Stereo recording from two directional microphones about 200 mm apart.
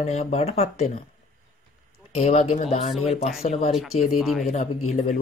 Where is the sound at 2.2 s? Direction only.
30° left (ahead or behind).